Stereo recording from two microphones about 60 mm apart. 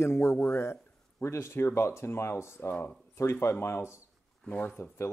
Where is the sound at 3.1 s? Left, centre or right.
Left.